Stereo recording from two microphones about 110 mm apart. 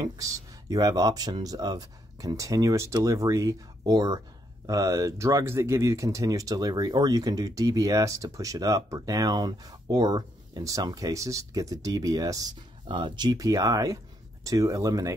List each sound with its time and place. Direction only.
0.0 s speech: 35° right (ahead or behind)
12.8 s speech: 45° right (ahead or behind)